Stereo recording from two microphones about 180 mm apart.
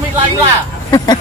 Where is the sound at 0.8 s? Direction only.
20° left (ahead or behind).